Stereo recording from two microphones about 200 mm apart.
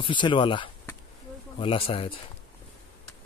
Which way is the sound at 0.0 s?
25° left (ahead or behind).